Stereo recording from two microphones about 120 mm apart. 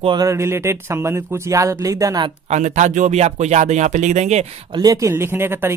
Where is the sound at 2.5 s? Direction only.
80° right.